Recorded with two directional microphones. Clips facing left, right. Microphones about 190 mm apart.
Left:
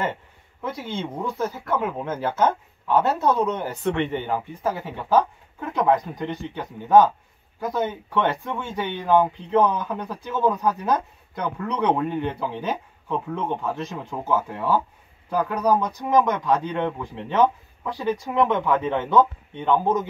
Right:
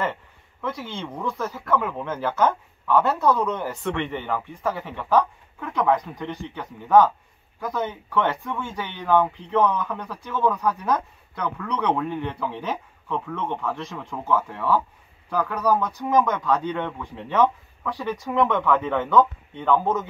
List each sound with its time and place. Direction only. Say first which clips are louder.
0.7 s speech: left 1 dB; 20° left (ahead or behind)
5.6 s speech: left 1 dB; 30° left (ahead or behind)
13.1 s speech: left 2 dB; 40° left (ahead or behind)
13.6 s speech: left 1 dB; 20° left (ahead or behind)